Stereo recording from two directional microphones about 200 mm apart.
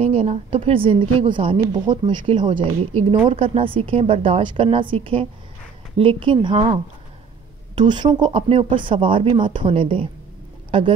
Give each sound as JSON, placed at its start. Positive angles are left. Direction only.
{"t": 0.0, "sound": "speech", "side_deg": -30}